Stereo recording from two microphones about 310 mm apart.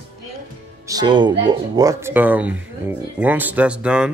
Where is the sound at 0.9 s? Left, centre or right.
Centre.